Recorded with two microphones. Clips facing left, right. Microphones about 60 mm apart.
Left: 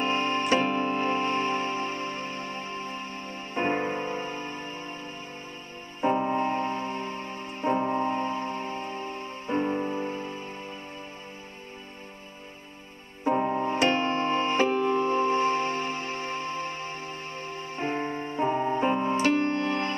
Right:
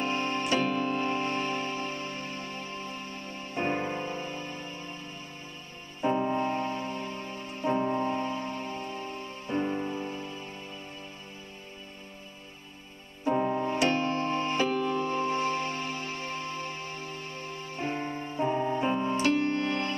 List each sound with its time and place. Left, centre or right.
0.0 s music: left
13.2 s music: left
13.7 s music: left